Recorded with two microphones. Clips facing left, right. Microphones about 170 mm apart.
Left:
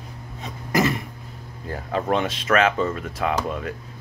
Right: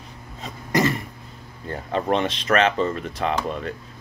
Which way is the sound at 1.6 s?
5° left (ahead or behind).